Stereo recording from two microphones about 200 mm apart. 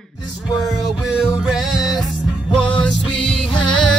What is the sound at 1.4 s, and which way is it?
Music, 5° right (ahead or behind).